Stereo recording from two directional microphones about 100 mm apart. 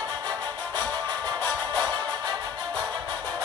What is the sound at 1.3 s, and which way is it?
Music, 10° left (ahead or behind).